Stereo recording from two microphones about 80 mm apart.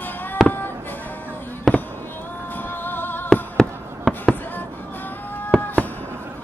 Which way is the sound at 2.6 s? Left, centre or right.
Left.